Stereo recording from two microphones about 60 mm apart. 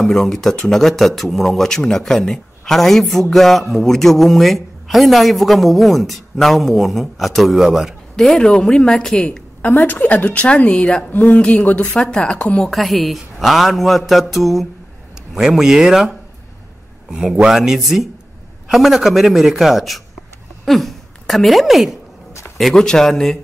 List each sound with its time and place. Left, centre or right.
0.0 s a man's voice: centre
8.2 s a woman's voice: centre
9.6 s speech: left
11.1 s speech: left
11.9 s a woman's voice: centre
12.6 s a man's voice: centre